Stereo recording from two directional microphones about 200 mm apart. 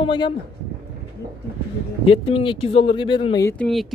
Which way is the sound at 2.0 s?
25° left (ahead or behind).